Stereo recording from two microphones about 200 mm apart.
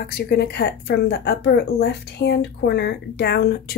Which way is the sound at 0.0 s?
55° left (ahead or behind).